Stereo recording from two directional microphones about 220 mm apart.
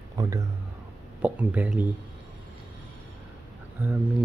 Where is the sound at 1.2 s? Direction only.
5° right (ahead or behind).